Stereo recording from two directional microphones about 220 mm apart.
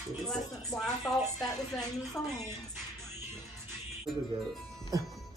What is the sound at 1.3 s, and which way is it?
Speech, centre (ahead or behind).